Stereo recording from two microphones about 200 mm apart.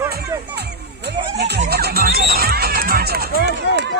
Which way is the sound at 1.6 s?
50° right (ahead or behind).